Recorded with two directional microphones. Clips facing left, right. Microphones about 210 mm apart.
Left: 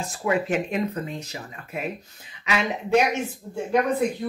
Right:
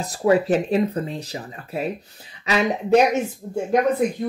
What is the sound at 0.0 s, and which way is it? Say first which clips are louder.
Speech: right 6 dB; 40° right (ahead or behind).